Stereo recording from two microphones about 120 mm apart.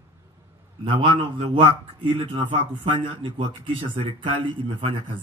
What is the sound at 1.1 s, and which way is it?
Speech, 45° right (ahead or behind).